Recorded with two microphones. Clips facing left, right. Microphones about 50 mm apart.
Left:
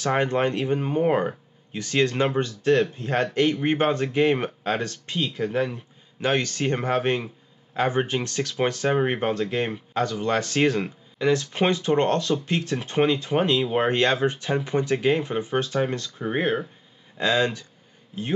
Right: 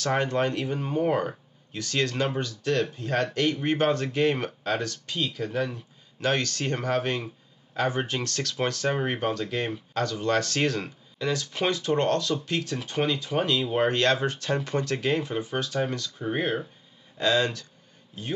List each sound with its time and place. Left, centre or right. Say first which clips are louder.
0.0 s speech: left 3 dB; left